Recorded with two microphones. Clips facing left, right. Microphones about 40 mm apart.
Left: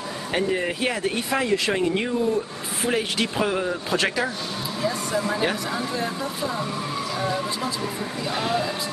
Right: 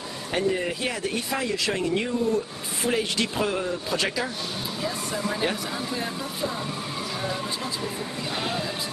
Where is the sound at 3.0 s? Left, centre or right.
Centre.